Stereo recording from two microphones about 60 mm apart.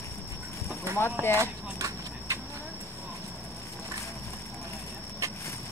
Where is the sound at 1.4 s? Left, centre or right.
Right.